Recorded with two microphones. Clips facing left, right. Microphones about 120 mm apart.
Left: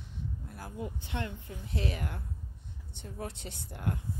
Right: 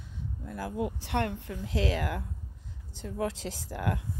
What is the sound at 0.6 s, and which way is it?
Speech, 90° right.